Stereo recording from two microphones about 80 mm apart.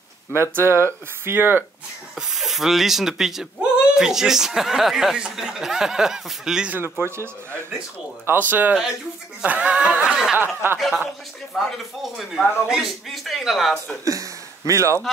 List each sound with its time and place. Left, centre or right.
0.3 s speech: right
2.1 s speech: centre
6.7 s speech: right
8.3 s speech: right
10.1 s speech: centre
10.4 s speech: right
10.8 s speech: centre
14.0 s speech: right